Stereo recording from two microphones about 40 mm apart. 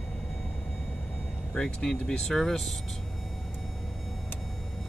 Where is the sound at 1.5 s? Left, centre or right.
Left; by 2.7 s centre.